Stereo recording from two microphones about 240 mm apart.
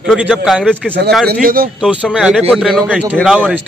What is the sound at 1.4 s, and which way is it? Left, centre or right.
Speech, right.